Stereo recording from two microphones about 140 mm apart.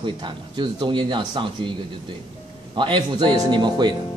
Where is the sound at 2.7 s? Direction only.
35° right (ahead or behind).